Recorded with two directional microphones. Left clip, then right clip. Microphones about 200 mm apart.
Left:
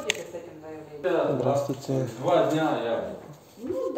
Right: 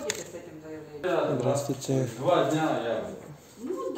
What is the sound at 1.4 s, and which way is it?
Speech, 15° right (ahead or behind).